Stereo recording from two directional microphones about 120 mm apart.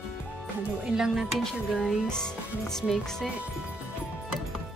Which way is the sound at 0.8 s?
5° right (ahead or behind).